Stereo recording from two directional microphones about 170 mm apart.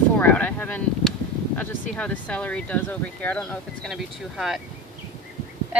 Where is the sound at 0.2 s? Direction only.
10° left (ahead or behind).